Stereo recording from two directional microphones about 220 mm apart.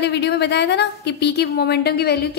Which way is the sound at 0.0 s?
50° left (ahead or behind).